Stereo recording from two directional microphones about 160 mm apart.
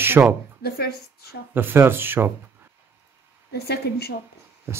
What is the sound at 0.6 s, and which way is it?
Speech, 85° left.